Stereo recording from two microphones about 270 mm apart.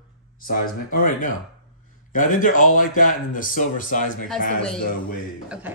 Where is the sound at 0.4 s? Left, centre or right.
Left.